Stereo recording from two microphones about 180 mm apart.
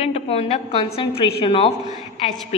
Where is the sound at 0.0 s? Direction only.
35° left (ahead or behind).